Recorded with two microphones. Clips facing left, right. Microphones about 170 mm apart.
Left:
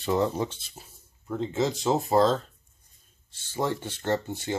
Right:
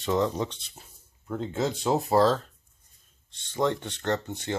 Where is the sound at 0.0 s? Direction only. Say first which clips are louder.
Even; 5° left (ahead or behind).